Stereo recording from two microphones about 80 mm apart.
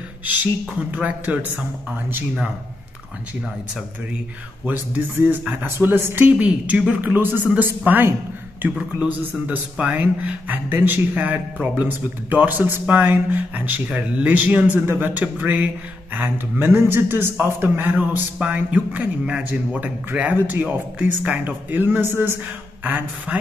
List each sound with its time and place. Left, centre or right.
0.2 s speech: right
4.6 s speech: right
6.2 s a woman's voice: centre